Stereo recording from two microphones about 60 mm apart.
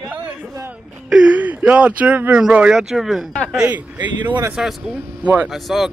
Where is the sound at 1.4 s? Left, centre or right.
Right.